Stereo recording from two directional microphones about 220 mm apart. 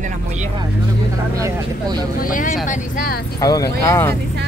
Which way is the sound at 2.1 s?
40° left (ahead or behind).